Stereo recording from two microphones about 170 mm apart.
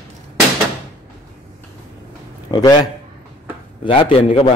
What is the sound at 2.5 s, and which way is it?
A man's voice, 25° left (ahead or behind).